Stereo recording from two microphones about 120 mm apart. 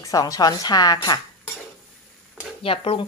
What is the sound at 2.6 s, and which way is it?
Speech, 50° left (ahead or behind).